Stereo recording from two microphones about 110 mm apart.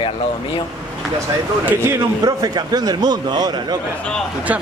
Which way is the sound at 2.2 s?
35° right (ahead or behind).